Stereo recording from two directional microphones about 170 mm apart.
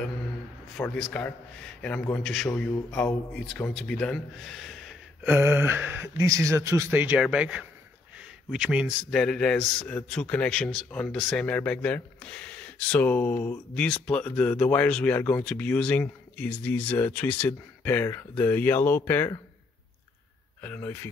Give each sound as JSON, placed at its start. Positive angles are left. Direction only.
{"t": 0.7, "sound": "a man's voice", "side_deg": 0}
{"t": 5.2, "sound": "a man's voice", "side_deg": -10}
{"t": 20.6, "sound": "a man's voice", "side_deg": 10}